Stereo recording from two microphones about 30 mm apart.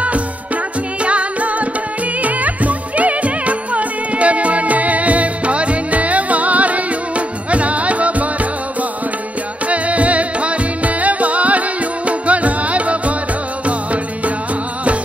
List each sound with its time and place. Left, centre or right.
1.0 s music: right
9.7 s music: right